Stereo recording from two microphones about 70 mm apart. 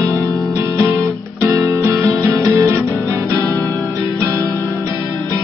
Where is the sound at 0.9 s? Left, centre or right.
Right.